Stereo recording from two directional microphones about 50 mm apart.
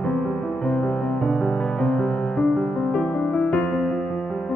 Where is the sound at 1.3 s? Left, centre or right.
Centre.